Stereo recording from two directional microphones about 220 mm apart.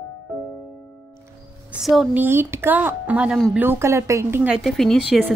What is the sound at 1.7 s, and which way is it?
A woman's voice, centre (ahead or behind).